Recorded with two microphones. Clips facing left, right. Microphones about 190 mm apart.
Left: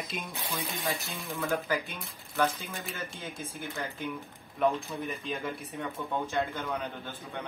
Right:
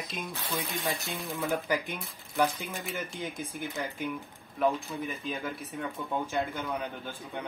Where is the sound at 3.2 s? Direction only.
15° right (ahead or behind).